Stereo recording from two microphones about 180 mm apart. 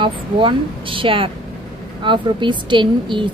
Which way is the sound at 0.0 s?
30° right (ahead or behind).